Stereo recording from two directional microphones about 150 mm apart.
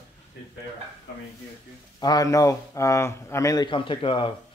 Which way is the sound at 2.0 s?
25° left (ahead or behind).